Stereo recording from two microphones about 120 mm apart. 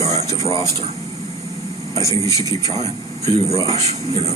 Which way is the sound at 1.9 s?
25° left (ahead or behind).